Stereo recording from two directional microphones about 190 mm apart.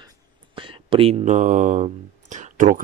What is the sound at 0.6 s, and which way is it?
Speech, 25° right (ahead or behind).